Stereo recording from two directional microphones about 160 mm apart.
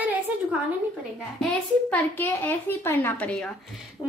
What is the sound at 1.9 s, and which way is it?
A woman's voice, 10° left (ahead or behind).